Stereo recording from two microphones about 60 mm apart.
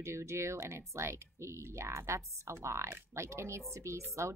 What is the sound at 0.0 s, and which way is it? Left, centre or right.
A woman's voice, right.